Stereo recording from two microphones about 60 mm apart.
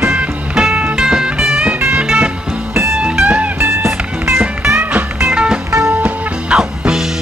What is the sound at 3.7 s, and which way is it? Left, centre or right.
Music, right.